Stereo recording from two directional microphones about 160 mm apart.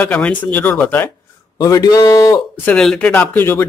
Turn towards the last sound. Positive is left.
turn(degrees=15)  # may be behind; listen again after turning